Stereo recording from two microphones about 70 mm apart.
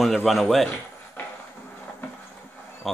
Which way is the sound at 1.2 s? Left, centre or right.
Left.